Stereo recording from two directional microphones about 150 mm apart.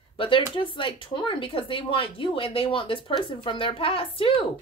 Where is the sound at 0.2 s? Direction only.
35° left (ahead or behind).